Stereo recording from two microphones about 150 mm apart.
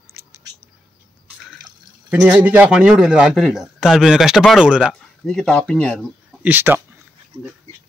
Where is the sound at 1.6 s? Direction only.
5° right (ahead or behind).